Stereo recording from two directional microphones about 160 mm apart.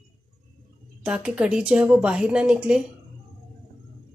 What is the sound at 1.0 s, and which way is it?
A woman's voice, 5° right (ahead or behind).